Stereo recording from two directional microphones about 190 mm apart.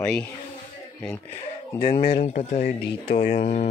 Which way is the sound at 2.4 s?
30° left (ahead or behind).